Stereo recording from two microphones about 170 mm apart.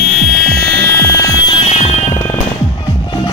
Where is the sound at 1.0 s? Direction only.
15° left (ahead or behind).